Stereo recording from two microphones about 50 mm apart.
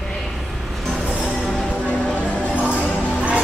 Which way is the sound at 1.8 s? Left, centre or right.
Left.